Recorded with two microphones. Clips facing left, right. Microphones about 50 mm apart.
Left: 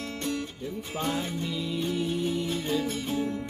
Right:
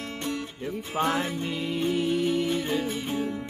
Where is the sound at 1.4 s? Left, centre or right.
Right.